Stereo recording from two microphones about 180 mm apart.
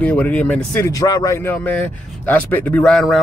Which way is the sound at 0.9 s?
20° left (ahead or behind).